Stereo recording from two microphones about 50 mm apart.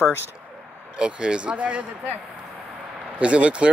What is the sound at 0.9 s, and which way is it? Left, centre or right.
Speech, centre.